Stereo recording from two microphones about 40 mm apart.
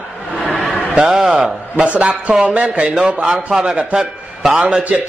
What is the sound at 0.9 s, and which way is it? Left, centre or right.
Speech, centre.